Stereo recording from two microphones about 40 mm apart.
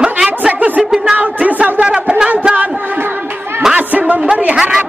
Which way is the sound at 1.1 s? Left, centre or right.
Right.